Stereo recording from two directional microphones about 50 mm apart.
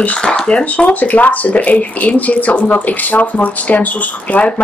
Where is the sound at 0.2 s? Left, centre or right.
Centre.